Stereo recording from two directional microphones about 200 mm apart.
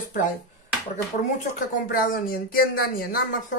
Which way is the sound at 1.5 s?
45° left (ahead or behind).